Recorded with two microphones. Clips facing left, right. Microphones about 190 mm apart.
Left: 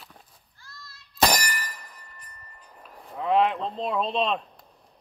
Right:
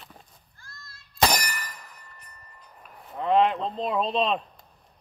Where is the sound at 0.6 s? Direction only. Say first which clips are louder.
Left 2 dB; 50° right (ahead or behind).